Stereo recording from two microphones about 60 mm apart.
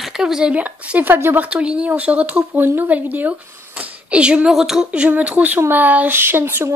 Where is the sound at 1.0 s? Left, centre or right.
Right.